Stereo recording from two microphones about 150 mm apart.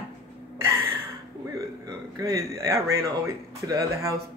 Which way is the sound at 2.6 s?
20° right (ahead or behind).